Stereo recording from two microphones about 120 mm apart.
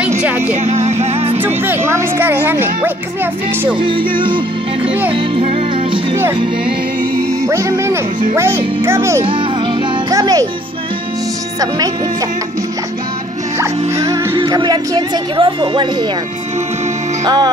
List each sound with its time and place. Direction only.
0.7 s music: 65° right (ahead or behind)
1.4 s speech: 20° right (ahead or behind)
3.8 s music: 45° right (ahead or behind)
7.4 s speech: 25° right (ahead or behind)
10.1 s music: 30° right (ahead or behind)
13.6 s speech: 25° right (ahead or behind)
14.3 s speech: 40° right (ahead or behind)
17.2 s music: 35° right (ahead or behind)